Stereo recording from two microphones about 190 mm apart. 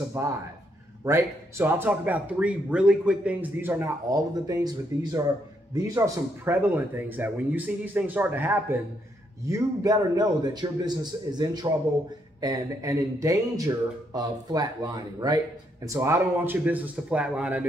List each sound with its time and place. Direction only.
0.2 s a man's voice: 15° right (ahead or behind)